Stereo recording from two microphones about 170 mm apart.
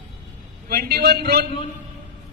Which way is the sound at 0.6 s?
60° right (ahead or behind).